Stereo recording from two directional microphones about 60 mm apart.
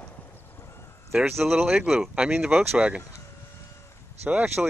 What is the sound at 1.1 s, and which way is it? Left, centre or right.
Speech, centre.